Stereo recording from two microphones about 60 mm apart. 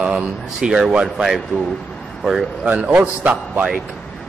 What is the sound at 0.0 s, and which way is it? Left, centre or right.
Speech, centre.